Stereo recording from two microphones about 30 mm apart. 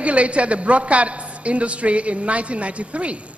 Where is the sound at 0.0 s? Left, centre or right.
Right.